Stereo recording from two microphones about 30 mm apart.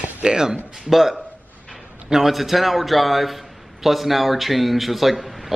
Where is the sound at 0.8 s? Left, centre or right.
Centre.